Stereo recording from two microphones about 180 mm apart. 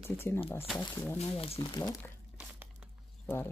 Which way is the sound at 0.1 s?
15° left (ahead or behind).